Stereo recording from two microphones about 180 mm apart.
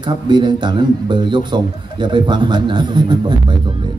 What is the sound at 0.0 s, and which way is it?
A man's voice, 25° right (ahead or behind).